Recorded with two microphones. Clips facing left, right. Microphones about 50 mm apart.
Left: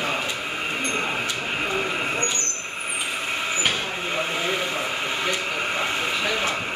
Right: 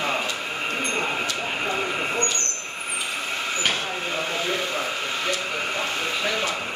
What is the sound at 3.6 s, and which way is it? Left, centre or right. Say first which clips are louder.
Vehicle: even; centre.